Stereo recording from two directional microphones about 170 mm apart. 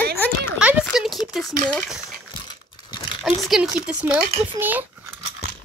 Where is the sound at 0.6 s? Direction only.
5° right (ahead or behind).